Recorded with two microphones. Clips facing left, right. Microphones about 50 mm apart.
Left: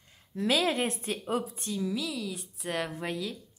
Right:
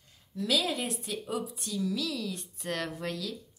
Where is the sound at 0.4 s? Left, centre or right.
Left.